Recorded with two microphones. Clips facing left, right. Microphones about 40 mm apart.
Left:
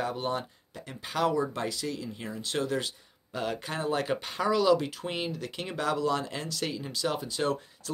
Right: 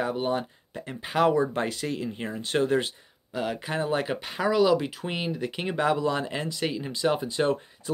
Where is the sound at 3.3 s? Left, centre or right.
Centre.